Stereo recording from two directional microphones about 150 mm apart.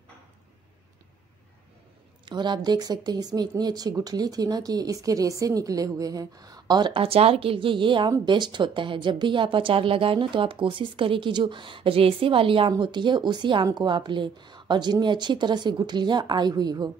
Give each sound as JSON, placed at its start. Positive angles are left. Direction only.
{"t": 2.2, "sound": "speech", "side_deg": -30}